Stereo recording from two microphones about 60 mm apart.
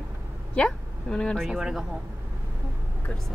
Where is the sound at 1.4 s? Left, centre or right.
Centre.